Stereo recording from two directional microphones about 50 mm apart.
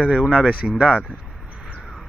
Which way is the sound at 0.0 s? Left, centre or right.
Right.